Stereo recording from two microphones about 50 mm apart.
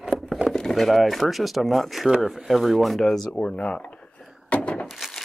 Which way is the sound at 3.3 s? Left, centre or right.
Left.